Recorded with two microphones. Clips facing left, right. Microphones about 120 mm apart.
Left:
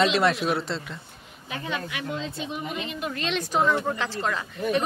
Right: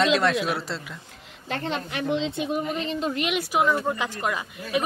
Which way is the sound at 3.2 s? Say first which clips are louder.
Left 1 dB; 10° right (ahead or behind).